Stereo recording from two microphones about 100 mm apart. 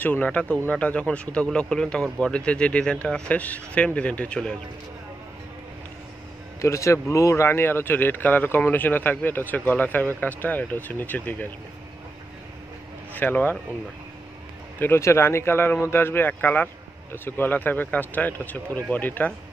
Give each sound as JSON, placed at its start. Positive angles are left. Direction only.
{"t": 0.0, "sound": "speech", "side_deg": 15}
{"t": 6.6, "sound": "speech", "side_deg": 30}
{"t": 13.1, "sound": "speech", "side_deg": 20}
{"t": 14.8, "sound": "speech", "side_deg": 25}